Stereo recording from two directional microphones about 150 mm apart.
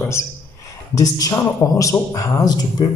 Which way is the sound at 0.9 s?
20° left (ahead or behind).